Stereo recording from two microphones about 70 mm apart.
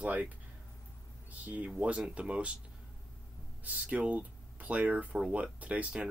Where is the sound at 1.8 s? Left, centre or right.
Centre.